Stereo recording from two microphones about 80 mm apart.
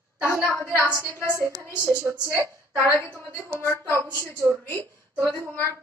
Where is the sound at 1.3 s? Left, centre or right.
Right.